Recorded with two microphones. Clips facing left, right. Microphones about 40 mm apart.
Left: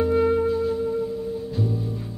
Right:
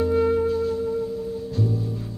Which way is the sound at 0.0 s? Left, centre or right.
Centre.